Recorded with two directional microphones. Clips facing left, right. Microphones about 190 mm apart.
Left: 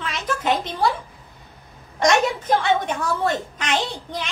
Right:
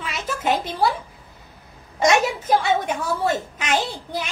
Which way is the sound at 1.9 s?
5° right (ahead or behind).